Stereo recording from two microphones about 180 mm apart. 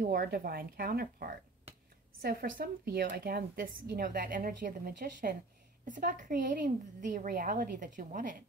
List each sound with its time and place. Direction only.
0.0 s speech: 55° right (ahead or behind)